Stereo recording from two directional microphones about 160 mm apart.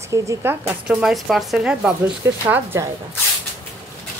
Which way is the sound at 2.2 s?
15° right (ahead or behind).